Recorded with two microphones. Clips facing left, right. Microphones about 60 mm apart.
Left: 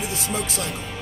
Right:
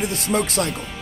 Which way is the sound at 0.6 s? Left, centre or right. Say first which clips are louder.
Right 6 dB; right.